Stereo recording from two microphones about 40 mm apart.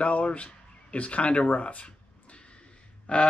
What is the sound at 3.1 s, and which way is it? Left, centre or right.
Speech, left.